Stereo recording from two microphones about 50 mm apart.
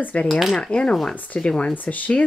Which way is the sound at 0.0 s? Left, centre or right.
Left.